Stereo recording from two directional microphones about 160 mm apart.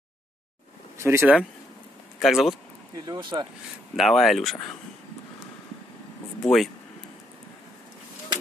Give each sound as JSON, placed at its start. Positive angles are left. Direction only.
{"t": 0.9, "sound": "speech", "side_deg": -15}
{"t": 2.1, "sound": "speech", "side_deg": 0}
{"t": 3.1, "sound": "speech", "side_deg": -30}
{"t": 3.9, "sound": "speech", "side_deg": 0}
{"t": 6.4, "sound": "speech", "side_deg": 0}